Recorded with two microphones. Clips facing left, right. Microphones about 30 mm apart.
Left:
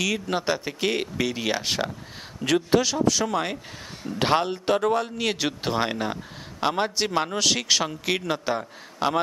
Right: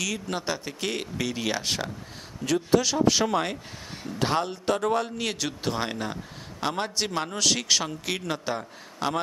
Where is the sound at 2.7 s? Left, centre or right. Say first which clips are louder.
Even; left.